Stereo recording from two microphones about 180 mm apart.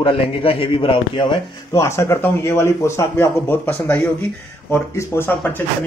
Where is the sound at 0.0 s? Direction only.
30° left (ahead or behind).